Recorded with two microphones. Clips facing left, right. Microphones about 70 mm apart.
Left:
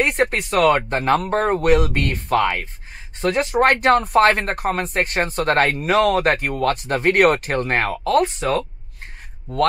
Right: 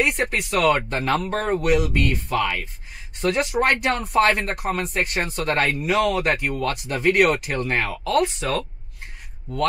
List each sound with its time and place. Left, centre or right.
0.0 s speech: left